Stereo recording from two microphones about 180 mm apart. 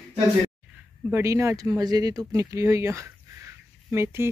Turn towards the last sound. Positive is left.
turn(degrees=-15)  # may be behind; listen again after turning